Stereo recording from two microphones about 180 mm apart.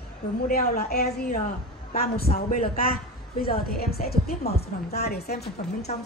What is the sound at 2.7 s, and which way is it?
A woman's voice, 55° left (ahead or behind).